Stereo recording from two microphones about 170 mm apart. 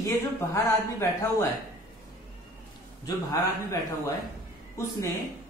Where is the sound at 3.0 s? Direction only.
20° left (ahead or behind).